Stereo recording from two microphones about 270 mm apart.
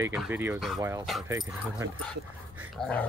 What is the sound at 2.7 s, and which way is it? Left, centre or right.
Speech, centre.